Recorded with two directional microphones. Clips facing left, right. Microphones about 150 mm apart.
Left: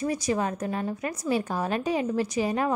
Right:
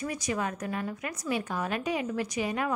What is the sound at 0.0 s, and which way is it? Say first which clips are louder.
A woman's voice: left 5 dB; 30° left (ahead or behind).